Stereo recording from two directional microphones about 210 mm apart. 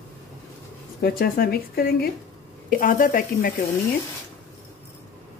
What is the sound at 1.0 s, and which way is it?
A woman's voice, 45° left (ahead or behind).